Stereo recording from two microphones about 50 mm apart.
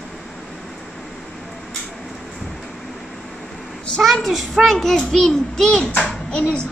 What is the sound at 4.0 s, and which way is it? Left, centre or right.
A child's voice, centre.